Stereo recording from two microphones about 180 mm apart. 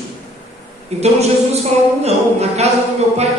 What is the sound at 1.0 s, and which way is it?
A woman's voice, 35° right (ahead or behind).